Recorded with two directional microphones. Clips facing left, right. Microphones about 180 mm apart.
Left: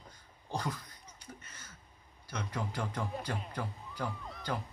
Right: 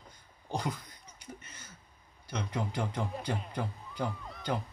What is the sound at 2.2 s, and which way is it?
Speech, 20° right (ahead or behind).